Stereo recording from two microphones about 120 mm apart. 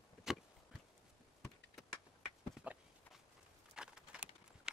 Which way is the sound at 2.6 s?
10° right (ahead or behind).